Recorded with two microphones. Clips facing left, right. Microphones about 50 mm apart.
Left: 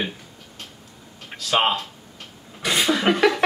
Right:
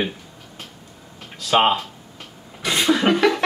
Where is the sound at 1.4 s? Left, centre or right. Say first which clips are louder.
Right 4 dB; centre.